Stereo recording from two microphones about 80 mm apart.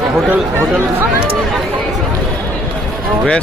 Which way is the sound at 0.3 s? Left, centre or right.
Right.